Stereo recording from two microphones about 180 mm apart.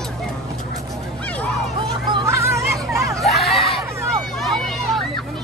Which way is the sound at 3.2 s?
Centre (ahead or behind).